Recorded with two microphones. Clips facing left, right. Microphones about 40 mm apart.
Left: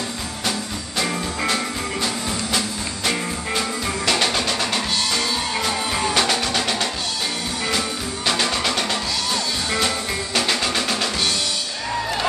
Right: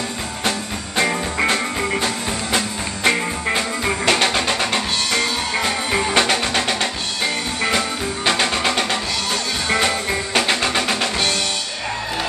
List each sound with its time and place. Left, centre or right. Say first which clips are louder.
0.5 s music: right 2 dB; right
8.3 s music: right 2 dB; right